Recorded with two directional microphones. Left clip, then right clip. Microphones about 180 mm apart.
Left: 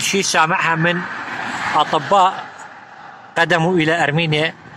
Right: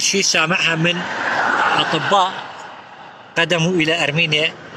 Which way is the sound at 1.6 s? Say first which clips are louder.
Right 1 dB; 50° right (ahead or behind).